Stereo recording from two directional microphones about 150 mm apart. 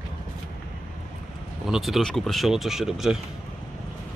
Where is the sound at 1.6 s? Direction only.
Centre (ahead or behind).